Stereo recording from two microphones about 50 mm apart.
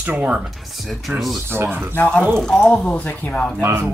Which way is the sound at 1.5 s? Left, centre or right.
Right.